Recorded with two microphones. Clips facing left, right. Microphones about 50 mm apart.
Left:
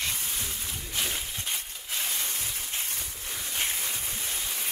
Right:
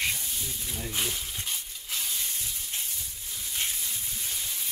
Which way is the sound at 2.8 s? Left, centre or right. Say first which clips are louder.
Left 4 dB; left.